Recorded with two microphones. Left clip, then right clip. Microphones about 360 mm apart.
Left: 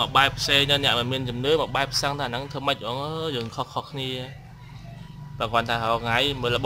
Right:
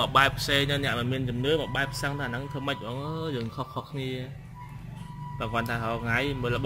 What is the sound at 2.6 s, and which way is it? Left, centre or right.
Speech, centre.